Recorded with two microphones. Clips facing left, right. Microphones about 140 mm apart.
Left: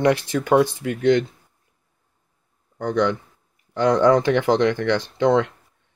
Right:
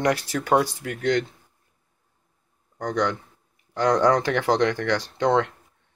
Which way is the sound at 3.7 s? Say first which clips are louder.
Left 3 dB; 25° left (ahead or behind).